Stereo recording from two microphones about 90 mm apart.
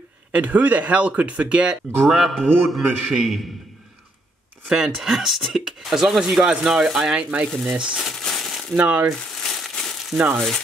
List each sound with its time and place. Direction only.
0.3 s speech: 15° right (ahead or behind)
2.0 s speech: centre (ahead or behind)
4.6 s speech: centre (ahead or behind)
7.4 s speech: 5° left (ahead or behind)
7.7 s speech: 10° right (ahead or behind)
8.0 s crumpling: 5° left (ahead or behind)
8.7 s speech: 15° right (ahead or behind)
9.4 s crumpling: 5° left (ahead or behind)
10.1 s speech: 15° right (ahead or behind)